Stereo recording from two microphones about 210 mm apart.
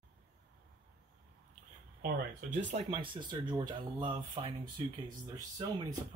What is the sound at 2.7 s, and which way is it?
Speech, 25° right (ahead or behind).